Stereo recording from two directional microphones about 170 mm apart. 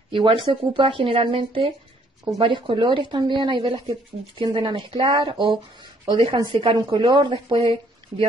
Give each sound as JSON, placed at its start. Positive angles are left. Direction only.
{"t": 0.1, "sound": "speech", "side_deg": -30}